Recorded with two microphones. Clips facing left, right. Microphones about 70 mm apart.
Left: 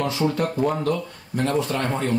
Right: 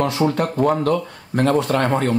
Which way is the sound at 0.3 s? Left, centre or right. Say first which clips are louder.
Right 4 dB; right.